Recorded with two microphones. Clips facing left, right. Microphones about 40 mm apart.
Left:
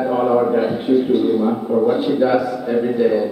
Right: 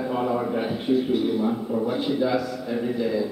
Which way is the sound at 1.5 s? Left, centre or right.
Left.